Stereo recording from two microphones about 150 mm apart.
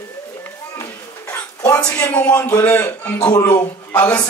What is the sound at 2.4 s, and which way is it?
Speech, 20° left (ahead or behind).